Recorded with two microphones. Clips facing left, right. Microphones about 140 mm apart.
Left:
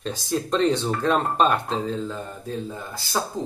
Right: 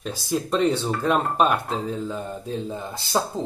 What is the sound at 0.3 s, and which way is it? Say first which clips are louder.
Speech: even; 10° right (ahead or behind).